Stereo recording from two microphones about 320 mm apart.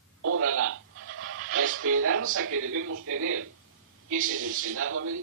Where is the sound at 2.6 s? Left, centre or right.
Right.